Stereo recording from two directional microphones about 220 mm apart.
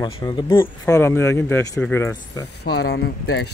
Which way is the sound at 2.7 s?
45° left (ahead or behind).